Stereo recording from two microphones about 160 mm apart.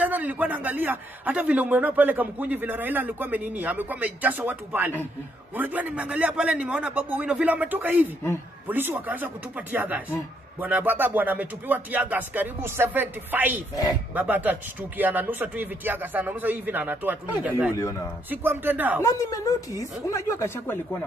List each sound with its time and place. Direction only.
0.0 s a man's voice: 10° right (ahead or behind)
19.0 s a woman's voice: 20° left (ahead or behind)